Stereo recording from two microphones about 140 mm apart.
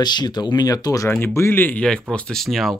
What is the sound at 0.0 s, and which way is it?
Speech, 30° left (ahead or behind).